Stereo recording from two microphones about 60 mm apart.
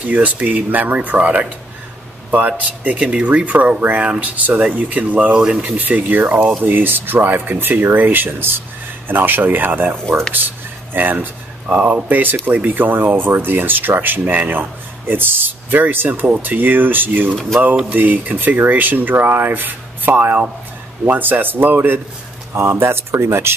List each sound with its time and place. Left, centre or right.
0.1 s speech: right
5.6 s speech: right